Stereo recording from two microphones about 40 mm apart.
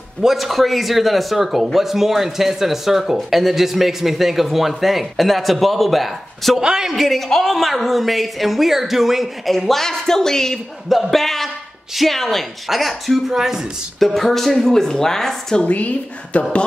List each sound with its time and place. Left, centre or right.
0.2 s speech: centre
6.6 s a man's voice: centre
7.0 s speech: centre
9.5 s speech: centre
10.9 s speech: centre
13.3 s a man's voice: centre
13.9 s speech: centre
15.6 s a woman's voice: left